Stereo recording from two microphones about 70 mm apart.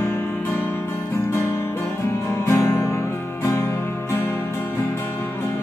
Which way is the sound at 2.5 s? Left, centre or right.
Left.